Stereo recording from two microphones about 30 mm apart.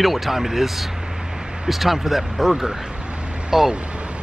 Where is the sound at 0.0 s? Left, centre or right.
Centre.